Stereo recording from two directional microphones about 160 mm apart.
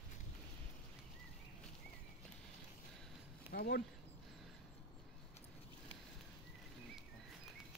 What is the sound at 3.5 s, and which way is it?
Speech, 75° left (ahead or behind).